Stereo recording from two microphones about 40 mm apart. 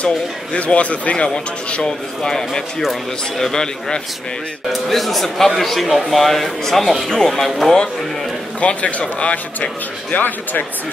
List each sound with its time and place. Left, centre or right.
0.0 s speech: left
1.8 s a man's voice: centre
8.5 s speech: left